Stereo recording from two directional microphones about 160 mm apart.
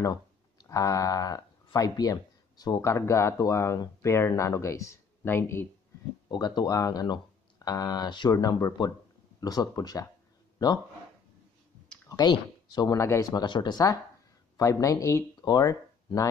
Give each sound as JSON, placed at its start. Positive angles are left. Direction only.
{"t": 0.0, "sound": "speech", "side_deg": 20}
{"t": 12.1, "sound": "speech", "side_deg": 25}